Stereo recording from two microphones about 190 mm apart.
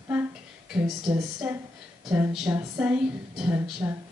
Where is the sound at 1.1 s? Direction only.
5° right (ahead or behind).